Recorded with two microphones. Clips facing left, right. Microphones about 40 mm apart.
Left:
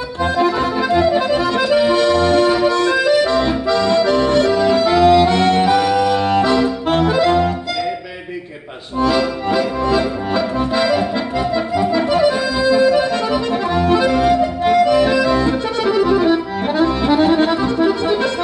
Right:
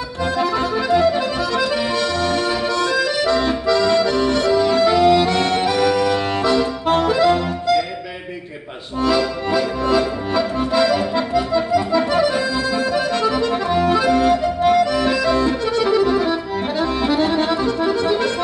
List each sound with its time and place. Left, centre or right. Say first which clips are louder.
0.2 s accordion: left 3 dB; left; by 6.4 s centre
6.4 s accordion: left 2 dB; centre
9.0 s accordion: left 2 dB; centre